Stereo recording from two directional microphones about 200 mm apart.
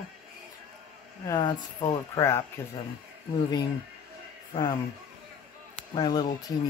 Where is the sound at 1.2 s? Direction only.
20° left (ahead or behind).